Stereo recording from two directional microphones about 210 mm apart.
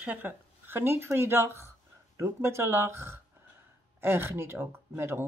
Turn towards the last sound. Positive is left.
turn(degrees=-10)  # may be behind; listen again after turning